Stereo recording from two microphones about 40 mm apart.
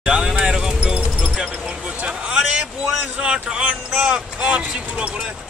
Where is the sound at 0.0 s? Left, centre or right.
Right.